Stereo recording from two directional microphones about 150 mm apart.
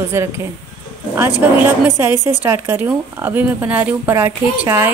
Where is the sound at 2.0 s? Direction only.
15° right (ahead or behind).